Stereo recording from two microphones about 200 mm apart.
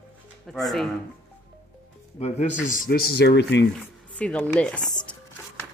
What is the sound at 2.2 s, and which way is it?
Speech, 30° left (ahead or behind).